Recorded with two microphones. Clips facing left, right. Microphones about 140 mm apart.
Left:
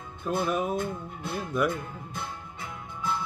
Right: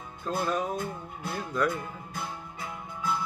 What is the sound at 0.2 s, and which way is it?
Music, 15° left (ahead or behind).